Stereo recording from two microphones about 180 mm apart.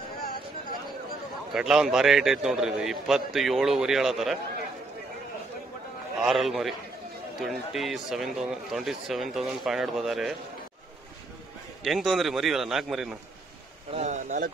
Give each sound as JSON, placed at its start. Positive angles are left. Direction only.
{"t": 1.5, "sound": "a man's voice", "side_deg": -5}
{"t": 6.2, "sound": "a man's voice", "side_deg": 0}
{"t": 11.8, "sound": "a man's voice", "side_deg": 0}
{"t": 13.9, "sound": "speech", "side_deg": -40}